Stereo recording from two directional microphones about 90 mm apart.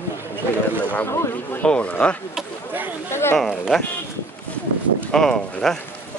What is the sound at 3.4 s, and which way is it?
Speech, 5° left (ahead or behind).